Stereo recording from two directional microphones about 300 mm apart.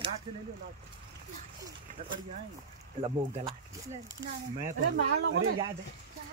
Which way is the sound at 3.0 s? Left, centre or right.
Centre.